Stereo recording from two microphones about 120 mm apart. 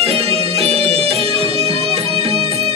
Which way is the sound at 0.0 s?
60° right (ahead or behind).